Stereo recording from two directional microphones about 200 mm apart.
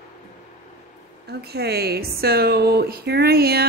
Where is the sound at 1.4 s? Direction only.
50° right (ahead or behind).